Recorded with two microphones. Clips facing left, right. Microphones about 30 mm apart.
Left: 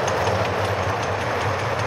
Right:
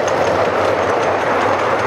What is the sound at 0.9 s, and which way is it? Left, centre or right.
Train, right.